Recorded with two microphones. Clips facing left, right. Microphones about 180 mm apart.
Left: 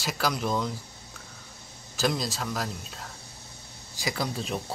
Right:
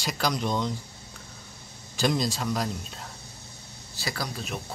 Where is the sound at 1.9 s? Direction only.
Centre (ahead or behind).